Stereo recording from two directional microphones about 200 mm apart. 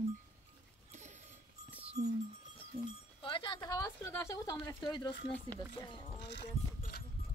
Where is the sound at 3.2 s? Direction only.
25° left (ahead or behind).